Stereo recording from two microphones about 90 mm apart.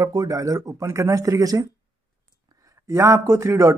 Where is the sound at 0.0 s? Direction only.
45° right (ahead or behind).